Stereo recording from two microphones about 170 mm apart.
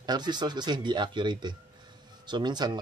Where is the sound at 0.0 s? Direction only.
25° right (ahead or behind).